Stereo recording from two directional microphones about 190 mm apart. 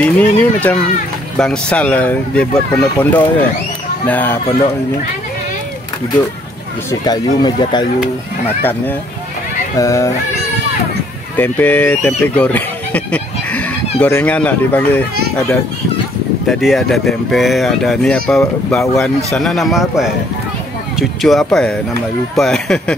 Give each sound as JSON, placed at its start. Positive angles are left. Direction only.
{"t": 0.0, "sound": "speech", "side_deg": 10}
{"t": 6.9, "sound": "speech", "side_deg": 20}
{"t": 9.8, "sound": "speech", "side_deg": 15}
{"t": 11.3, "sound": "speech", "side_deg": 10}
{"t": 16.4, "sound": "speech", "side_deg": 0}
{"t": 21.2, "sound": "speech", "side_deg": 0}